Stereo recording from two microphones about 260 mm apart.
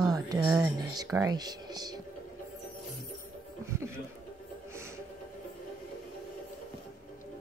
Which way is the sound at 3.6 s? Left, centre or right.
Centre.